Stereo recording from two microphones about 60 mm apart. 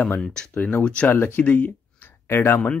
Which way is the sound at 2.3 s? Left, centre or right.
Left.